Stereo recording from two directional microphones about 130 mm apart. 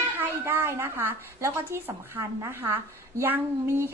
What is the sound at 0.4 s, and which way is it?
A woman's voice, 20° right (ahead or behind).